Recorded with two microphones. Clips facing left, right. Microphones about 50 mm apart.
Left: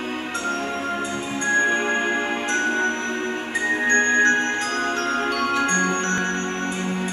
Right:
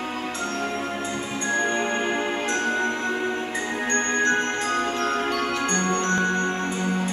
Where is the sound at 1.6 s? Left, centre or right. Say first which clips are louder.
Left 3 dB; left.